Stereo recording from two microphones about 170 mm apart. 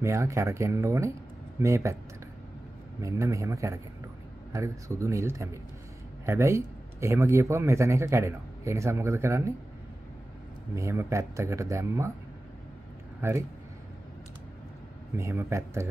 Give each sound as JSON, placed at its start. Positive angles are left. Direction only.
{"t": 0.0, "sound": "a man's voice", "side_deg": -15}
{"t": 3.0, "sound": "a man's voice", "side_deg": -20}
{"t": 10.8, "sound": "a man's voice", "side_deg": -15}
{"t": 13.2, "sound": "a man's voice", "side_deg": -15}
{"t": 15.1, "sound": "a man's voice", "side_deg": -15}